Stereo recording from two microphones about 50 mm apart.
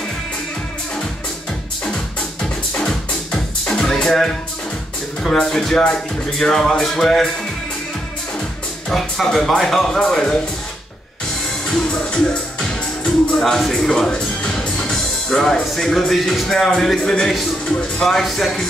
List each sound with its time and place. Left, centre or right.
2.8 s music: centre
5.2 s speech: centre
8.8 s speech: centre
11.7 s music: centre
13.4 s speech: centre
18.0 s speech: centre